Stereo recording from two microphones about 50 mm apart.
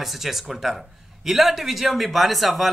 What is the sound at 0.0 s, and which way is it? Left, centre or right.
A man's voice, centre.